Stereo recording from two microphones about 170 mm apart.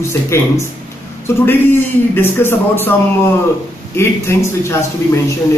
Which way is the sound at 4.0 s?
15° left (ahead or behind).